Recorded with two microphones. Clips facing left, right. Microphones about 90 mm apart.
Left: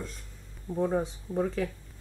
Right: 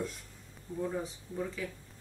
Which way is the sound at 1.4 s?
50° left (ahead or behind).